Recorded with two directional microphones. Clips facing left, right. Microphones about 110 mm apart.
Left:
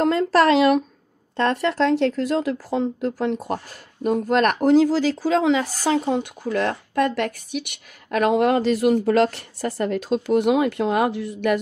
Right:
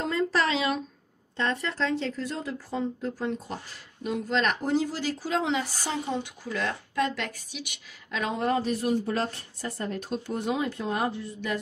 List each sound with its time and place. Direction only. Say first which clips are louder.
0.0 s speech: left 9 dB; 65° left (ahead or behind)